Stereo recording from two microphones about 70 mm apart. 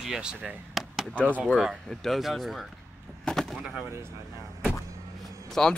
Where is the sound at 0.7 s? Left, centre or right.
Centre.